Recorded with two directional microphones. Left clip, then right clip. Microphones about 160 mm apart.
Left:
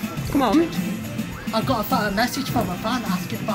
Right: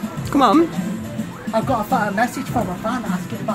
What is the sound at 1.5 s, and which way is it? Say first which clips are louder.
Speech: right 3 dB; 5° right (ahead or behind).